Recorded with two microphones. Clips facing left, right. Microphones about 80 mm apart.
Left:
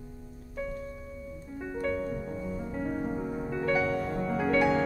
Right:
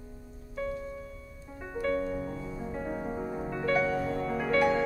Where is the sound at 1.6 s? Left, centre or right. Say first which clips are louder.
Right 1 dB; centre.